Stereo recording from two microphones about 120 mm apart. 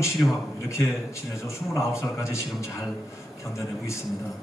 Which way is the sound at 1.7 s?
25° left (ahead or behind).